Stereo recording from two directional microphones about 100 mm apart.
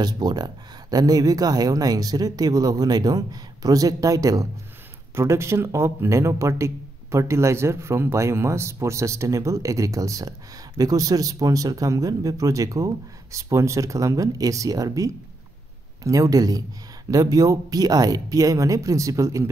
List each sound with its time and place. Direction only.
0.0 s a man's voice: 45° right (ahead or behind)